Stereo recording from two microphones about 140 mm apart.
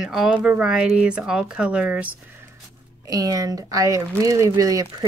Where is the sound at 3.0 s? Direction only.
25° right (ahead or behind).